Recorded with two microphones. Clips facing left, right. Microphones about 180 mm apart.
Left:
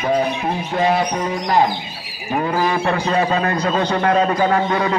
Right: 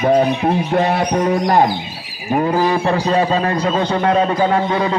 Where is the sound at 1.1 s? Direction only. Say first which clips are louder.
Right 6 dB; 50° right (ahead or behind).